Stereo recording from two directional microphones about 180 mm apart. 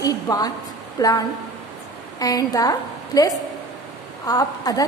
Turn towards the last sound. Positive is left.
turn(degrees=20)  # may be behind; listen again after turning